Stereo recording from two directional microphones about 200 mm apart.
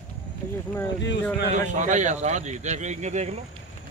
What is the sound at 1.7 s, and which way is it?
Speech, 40° right (ahead or behind).